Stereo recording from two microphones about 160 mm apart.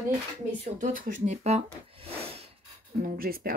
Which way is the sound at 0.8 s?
55° right (ahead or behind).